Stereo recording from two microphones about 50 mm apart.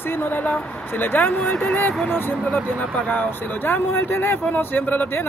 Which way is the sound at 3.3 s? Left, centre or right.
Left.